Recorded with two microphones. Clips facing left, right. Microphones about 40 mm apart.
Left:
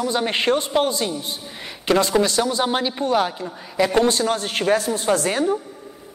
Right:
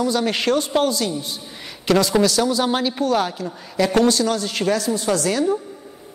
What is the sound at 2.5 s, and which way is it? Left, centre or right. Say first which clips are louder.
A woman's voice: right 1 dB; centre.